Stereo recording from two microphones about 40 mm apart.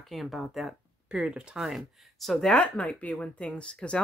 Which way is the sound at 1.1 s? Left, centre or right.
Right.